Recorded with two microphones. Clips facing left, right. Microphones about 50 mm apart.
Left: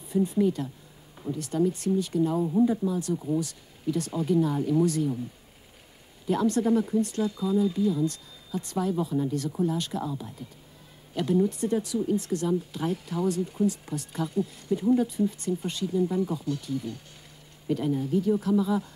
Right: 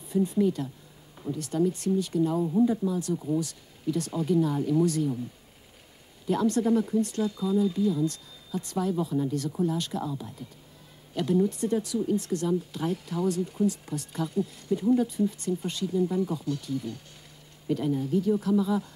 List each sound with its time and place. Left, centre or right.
0.1 s speech: centre
2.4 s speech: left
6.2 s speech: centre